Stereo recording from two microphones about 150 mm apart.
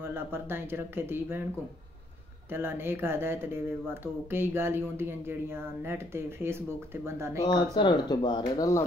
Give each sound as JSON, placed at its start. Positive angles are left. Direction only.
{"t": 0.0, "sound": "speech", "side_deg": -15}
{"t": 2.5, "sound": "speech", "side_deg": -15}
{"t": 7.4, "sound": "speech", "side_deg": 30}